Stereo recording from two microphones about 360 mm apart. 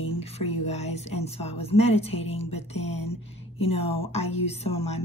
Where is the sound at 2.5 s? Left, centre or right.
Left.